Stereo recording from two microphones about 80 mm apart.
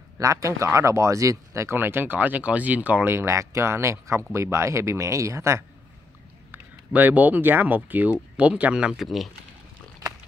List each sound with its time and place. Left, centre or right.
0.2 s speech: right
6.5 s speech: right; by 9.3 s centre